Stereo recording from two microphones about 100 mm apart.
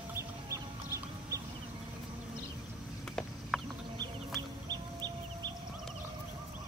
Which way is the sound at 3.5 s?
Centre (ahead or behind).